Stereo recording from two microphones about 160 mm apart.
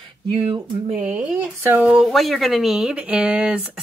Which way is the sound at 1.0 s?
10° right (ahead or behind).